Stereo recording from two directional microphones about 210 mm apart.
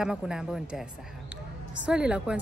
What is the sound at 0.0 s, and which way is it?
Speech, 5° right (ahead or behind).